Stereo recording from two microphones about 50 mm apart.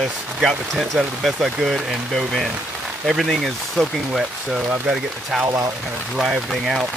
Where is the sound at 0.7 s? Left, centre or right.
Centre.